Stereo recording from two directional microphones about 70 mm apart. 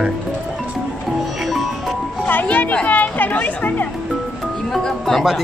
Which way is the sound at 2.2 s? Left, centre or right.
Left.